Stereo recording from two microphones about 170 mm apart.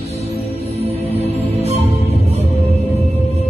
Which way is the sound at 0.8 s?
35° right (ahead or behind).